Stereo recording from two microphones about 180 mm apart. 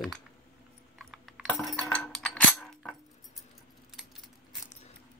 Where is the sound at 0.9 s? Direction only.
Centre (ahead or behind).